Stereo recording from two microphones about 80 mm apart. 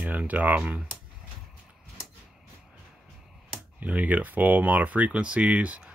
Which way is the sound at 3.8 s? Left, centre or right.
Centre.